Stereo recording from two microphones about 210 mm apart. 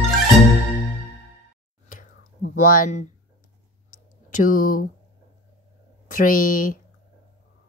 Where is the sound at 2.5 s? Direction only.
40° left (ahead or behind).